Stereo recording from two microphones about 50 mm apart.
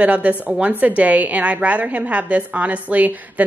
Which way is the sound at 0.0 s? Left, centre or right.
Right.